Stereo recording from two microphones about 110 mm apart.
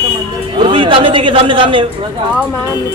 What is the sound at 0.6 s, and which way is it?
A man's voice, 50° right (ahead or behind).